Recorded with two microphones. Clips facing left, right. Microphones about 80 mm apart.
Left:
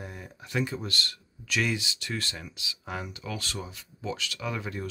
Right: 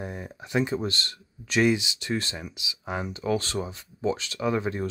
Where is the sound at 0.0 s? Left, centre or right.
Right.